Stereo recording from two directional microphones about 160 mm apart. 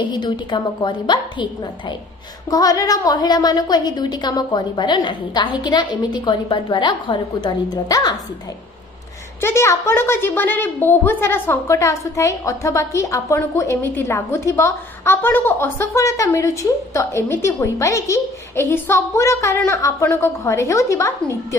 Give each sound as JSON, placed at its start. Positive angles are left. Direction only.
{"t": 0.0, "sound": "a woman's voice", "side_deg": 30}
{"t": 9.4, "sound": "a woman's voice", "side_deg": 15}